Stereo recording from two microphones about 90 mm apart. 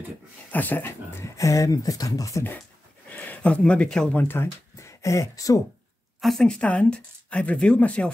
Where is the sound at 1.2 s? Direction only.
35° left (ahead or behind).